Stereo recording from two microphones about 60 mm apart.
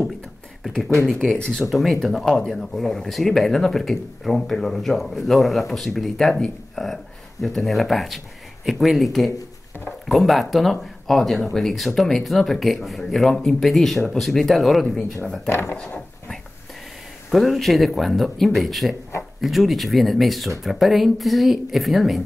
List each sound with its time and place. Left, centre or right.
0.8 s speech: centre
15.7 s speech: left
17.3 s speech: centre